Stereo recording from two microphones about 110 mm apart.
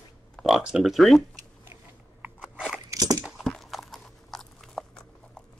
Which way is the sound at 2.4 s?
5° right (ahead or behind).